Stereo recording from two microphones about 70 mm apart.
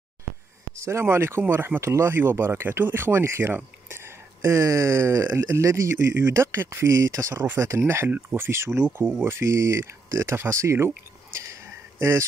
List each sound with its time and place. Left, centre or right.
0.7 s speech: right
12.0 s speech: right